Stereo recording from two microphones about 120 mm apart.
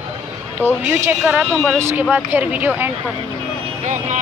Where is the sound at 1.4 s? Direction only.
5° right (ahead or behind).